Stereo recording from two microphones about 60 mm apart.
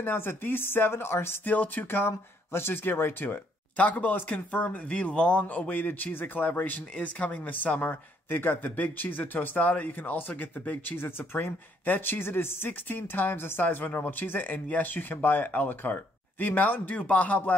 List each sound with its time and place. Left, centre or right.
0.0 s speech: left
1.4 s speech: left
3.7 s speech: left